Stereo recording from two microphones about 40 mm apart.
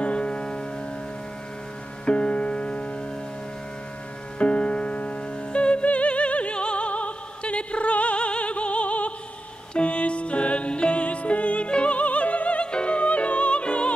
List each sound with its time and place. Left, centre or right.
0.0 s music: left
2.0 s music: left
4.4 s music: left